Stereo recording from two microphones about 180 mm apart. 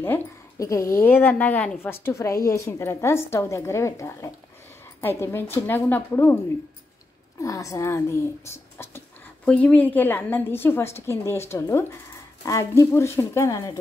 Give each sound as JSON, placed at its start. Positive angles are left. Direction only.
{"t": 0.0, "sound": "speech", "side_deg": 15}
{"t": 7.4, "sound": "speech", "side_deg": 20}